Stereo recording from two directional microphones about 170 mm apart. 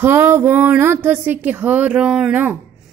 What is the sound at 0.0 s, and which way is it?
A woman's voice, 15° right (ahead or behind).